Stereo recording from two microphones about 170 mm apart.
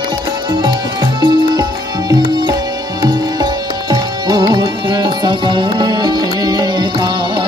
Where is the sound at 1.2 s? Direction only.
25° right (ahead or behind).